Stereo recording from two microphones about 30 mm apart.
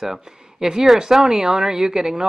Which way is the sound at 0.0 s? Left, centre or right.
Centre.